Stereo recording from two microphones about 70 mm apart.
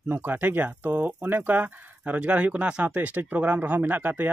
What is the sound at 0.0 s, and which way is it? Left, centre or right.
Speech, right.